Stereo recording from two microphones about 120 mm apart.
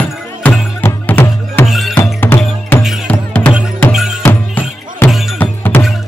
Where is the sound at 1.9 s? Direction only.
15° left (ahead or behind).